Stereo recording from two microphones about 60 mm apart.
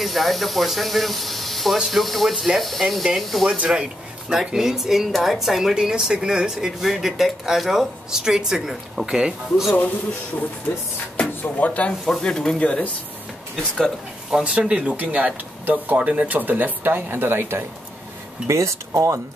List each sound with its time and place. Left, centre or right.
0.0 s speech: centre
3.5 s speech: centre
11.4 s speech: left
12.1 s speech: centre
14.4 s speech: centre; by 17.6 s right
18.5 s speech: right